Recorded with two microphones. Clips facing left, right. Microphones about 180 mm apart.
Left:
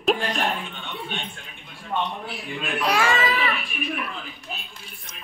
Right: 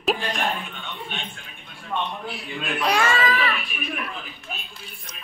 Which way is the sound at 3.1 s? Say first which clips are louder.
Even; 20° left (ahead or behind).